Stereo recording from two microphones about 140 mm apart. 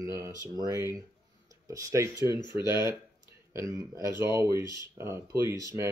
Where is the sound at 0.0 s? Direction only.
25° right (ahead or behind).